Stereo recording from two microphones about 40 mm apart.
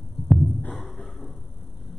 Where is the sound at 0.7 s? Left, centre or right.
Centre.